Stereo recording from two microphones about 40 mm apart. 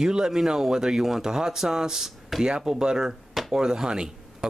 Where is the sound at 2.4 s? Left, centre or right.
Centre.